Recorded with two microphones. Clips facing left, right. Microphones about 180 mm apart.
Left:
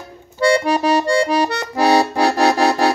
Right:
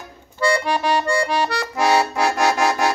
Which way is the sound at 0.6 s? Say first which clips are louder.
Left 4 dB; 35° left (ahead or behind).